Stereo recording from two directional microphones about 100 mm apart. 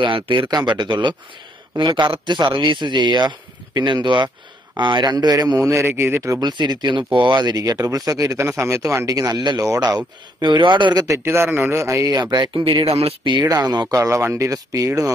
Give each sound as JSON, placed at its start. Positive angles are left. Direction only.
{"t": 0.0, "sound": "speech", "side_deg": -60}
{"t": 5.6, "sound": "speech", "side_deg": -25}
{"t": 6.4, "sound": "speech", "side_deg": -45}
{"t": 9.1, "sound": "speech", "side_deg": -40}
{"t": 11.1, "sound": "speech", "side_deg": -25}
{"t": 12.1, "sound": "speech", "side_deg": -45}
{"t": 12.8, "sound": "speech", "side_deg": -85}
{"t": 13.3, "sound": "speech", "side_deg": -45}
{"t": 13.9, "sound": "speech", "side_deg": -30}